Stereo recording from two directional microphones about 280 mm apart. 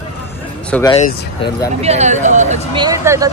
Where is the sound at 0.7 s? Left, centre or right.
Centre.